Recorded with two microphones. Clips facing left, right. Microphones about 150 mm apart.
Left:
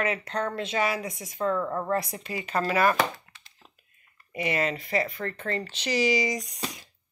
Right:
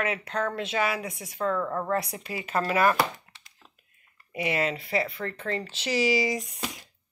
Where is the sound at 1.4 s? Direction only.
20° left (ahead or behind).